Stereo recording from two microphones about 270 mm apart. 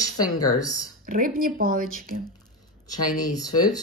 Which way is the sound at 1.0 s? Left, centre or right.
Right.